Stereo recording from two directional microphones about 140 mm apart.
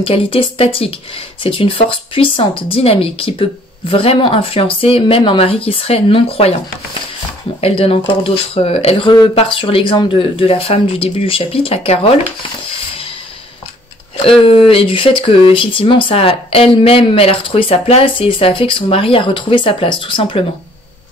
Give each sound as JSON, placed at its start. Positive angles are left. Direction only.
{"t": 0.0, "sound": "speech", "side_deg": 40}
{"t": 14.4, "sound": "speech", "side_deg": 40}